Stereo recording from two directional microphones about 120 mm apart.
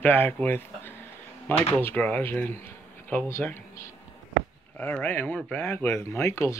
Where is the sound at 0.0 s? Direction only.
15° left (ahead or behind).